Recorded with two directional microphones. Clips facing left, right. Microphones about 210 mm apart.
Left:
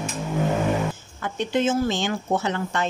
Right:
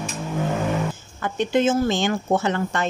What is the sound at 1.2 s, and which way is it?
A woman's voice, 45° right (ahead or behind).